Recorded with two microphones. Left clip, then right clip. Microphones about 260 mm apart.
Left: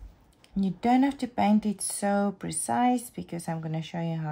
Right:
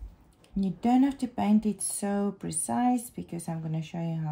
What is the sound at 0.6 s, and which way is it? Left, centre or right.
Speech, left.